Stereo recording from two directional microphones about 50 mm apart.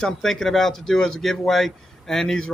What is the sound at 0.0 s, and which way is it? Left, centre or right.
Speech, centre.